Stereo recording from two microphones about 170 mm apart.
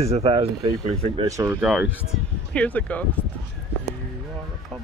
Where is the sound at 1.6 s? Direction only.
5° right (ahead or behind).